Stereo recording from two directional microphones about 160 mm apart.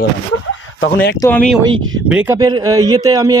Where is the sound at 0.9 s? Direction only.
75° left (ahead or behind).